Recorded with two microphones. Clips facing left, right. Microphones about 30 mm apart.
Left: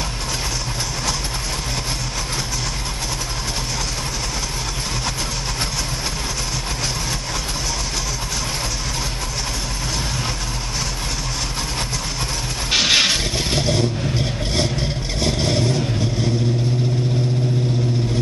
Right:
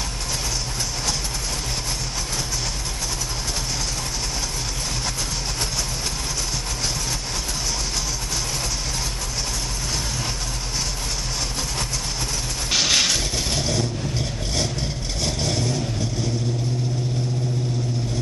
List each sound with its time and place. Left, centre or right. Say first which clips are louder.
12.7 s vehicle: left 4 dB; left